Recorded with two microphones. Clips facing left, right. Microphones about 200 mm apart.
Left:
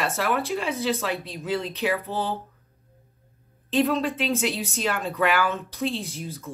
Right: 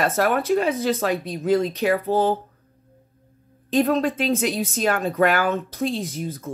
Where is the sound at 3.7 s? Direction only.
40° right (ahead or behind).